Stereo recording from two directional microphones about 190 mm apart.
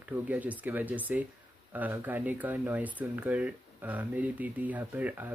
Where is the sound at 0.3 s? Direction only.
10° right (ahead or behind).